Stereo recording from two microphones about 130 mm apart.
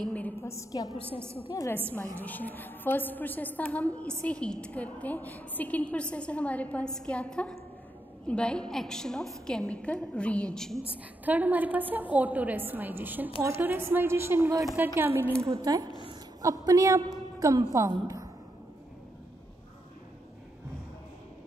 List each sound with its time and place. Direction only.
0.1 s a sound: 15° left (ahead or behind)
1.5 s a woman's voice: 25° left (ahead or behind)
2.1 s a woman's voice: 10° left (ahead or behind)
10.9 s a woman's voice: 10° right (ahead or behind)
15.5 s a woman's voice: 30° right (ahead or behind)
18.0 s a sound: 25° right (ahead or behind)